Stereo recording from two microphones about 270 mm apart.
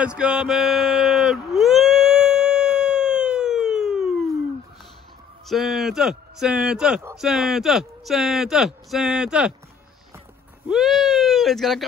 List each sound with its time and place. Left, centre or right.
0.0 s a sound: centre
5.5 s speech: centre
10.7 s speech: centre